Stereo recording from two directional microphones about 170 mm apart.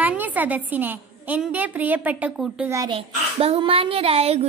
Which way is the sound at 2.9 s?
35° right (ahead or behind).